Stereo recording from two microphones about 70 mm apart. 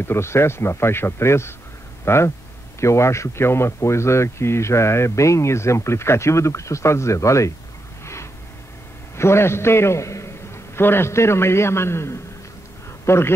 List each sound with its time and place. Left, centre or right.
0.0 s speech: left
8.0 s a sound: left
9.1 s a man's voice: left